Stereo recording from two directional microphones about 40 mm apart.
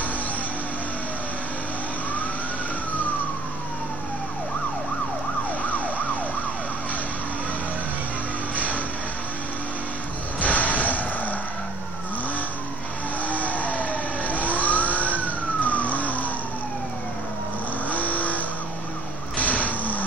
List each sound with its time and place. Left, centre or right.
8.5 s vehicle: left
10.4 s a sound: left
13.3 s vehicle: left
15.6 s emergency vehicle: left
17.8 s vehicle: left